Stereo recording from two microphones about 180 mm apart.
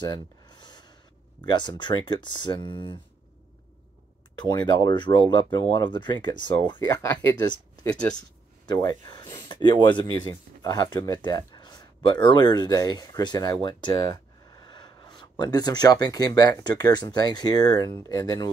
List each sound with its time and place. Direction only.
0.0 s a sound: 25° left (ahead or behind)
1.4 s speech: 25° left (ahead or behind)
4.4 s speech: 25° left (ahead or behind); by 8.2 s 5° left (ahead or behind)
8.6 s speech: 20° left (ahead or behind)